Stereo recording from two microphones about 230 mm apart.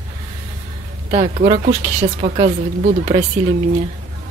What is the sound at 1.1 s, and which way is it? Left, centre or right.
Speech, right.